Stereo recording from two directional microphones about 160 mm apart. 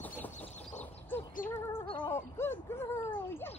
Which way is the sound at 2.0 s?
15° left (ahead or behind).